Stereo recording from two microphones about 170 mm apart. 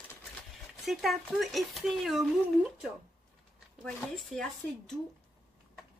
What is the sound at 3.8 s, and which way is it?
Speech, 5° left (ahead or behind).